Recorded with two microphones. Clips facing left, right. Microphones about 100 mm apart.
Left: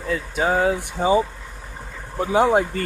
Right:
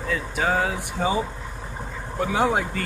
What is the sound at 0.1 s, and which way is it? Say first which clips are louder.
Speech: left 3 dB; 30° left (ahead or behind).